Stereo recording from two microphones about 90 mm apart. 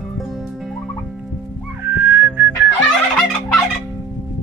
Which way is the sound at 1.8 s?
20° right (ahead or behind).